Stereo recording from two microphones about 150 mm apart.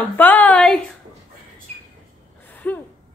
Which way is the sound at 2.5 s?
10° left (ahead or behind).